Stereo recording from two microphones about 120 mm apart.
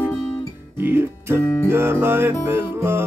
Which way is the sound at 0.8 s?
20° right (ahead or behind).